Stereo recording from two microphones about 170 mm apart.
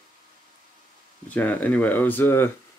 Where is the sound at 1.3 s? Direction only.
10° left (ahead or behind).